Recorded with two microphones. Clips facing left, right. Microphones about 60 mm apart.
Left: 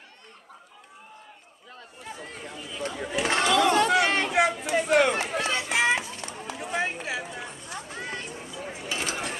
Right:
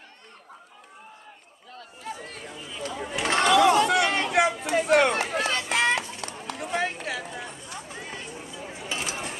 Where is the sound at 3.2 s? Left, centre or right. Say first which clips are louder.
Right 3 dB; centre.